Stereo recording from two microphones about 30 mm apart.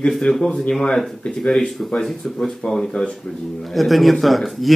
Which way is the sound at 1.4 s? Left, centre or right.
Left.